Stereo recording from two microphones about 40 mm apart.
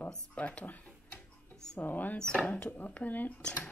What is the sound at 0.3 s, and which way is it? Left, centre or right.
Speech, left.